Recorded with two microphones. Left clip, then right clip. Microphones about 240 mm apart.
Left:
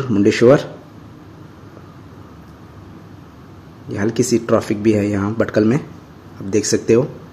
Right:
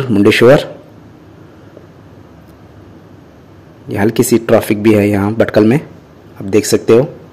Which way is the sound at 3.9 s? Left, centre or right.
Centre.